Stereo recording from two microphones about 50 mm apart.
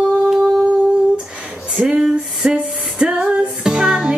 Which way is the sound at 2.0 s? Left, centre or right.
Centre.